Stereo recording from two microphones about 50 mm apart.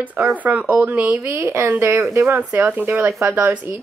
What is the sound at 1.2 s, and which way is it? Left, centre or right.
A woman's voice, right.